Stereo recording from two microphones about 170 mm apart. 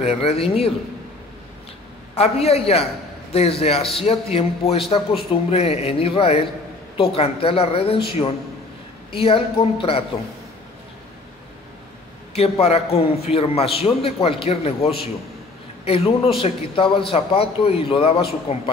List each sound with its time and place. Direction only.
0.0 s a man's voice: 35° left (ahead or behind)
2.1 s a man's voice: 35° left (ahead or behind)
12.4 s a man's voice: 35° left (ahead or behind)